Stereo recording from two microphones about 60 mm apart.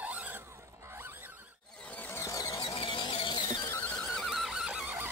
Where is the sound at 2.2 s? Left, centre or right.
Left.